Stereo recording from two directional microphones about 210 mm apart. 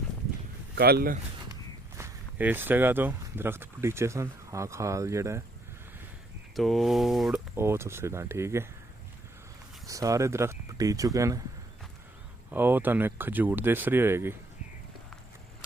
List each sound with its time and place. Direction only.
0.7 s speech: 50° right (ahead or behind)
2.0 s speech: 10° right (ahead or behind)
6.5 s speech: centre (ahead or behind)
9.8 s speech: 15° right (ahead or behind)
12.4 s speech: 10° right (ahead or behind)